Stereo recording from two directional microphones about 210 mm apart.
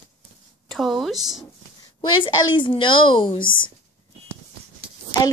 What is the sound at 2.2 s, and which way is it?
A woman's voice, 25° left (ahead or behind).